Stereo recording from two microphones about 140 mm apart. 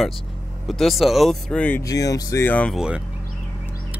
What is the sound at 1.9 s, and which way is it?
Speech, 25° left (ahead or behind).